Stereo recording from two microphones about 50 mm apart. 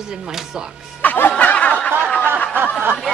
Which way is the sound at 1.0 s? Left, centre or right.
Left.